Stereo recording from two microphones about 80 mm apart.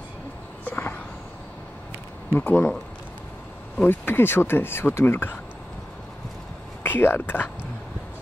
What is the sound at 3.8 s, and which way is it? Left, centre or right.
Speech, left.